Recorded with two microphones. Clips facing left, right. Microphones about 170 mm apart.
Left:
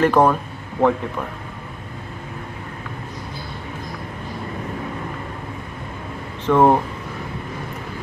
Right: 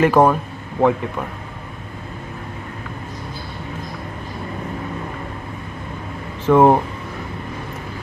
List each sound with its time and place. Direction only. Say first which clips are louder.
0.0 s speech: right 2 dB; 5° right (ahead or behind)
6.4 s speech: right 2 dB; 10° right (ahead or behind)